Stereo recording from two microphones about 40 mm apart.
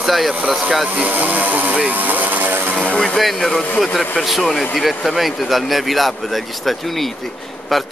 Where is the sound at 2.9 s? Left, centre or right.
Centre.